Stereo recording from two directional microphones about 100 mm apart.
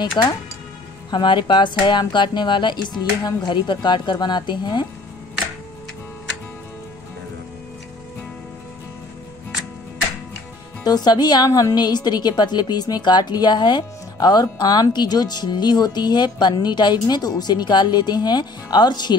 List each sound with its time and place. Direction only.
0.2 s a woman's voice: 50° left (ahead or behind)
10.8 s a woman's voice: 45° left (ahead or behind)